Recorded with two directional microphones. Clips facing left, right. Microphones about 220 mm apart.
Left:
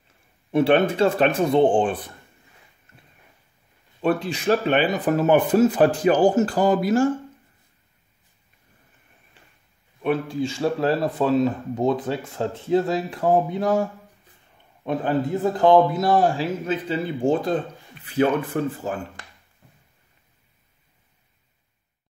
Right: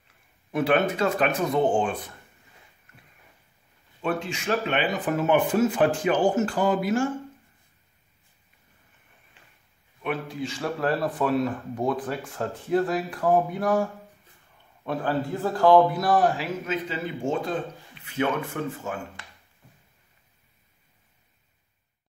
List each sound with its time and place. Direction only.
0.5 s speech: 30° left (ahead or behind)
4.0 s speech: 35° left (ahead or behind)
10.0 s speech: 30° left (ahead or behind)